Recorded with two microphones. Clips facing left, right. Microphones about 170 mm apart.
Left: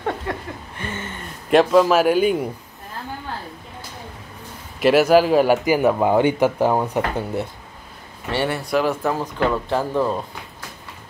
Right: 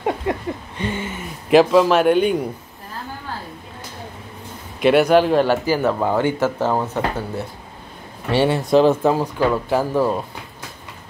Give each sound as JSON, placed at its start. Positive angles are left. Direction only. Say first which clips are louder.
{"t": 0.0, "sound": "speech", "louder": "right 4 dB", "side_deg": -15}
{"t": 4.7, "sound": "a man's voice", "louder": "even", "side_deg": 5}
{"t": 8.3, "sound": "speech", "louder": "right 5 dB", "side_deg": -15}